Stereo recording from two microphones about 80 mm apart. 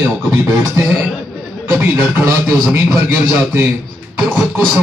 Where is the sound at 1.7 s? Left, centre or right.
Right.